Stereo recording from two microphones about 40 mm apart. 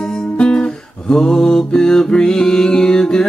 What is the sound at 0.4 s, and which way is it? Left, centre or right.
Music, left.